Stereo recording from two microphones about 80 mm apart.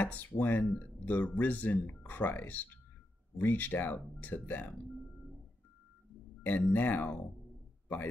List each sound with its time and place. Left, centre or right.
0.0 s speech: left
6.4 s speech: left